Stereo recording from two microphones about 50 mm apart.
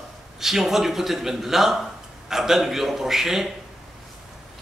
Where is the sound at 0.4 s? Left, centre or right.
Centre.